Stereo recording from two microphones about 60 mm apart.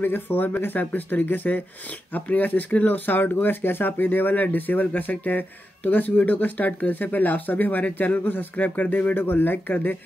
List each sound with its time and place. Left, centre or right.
0.0 s speech: left